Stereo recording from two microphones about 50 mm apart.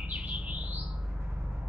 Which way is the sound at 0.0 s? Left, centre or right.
Right.